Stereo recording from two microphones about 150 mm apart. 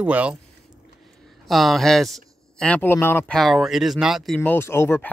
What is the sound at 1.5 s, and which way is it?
Speech, centre (ahead or behind).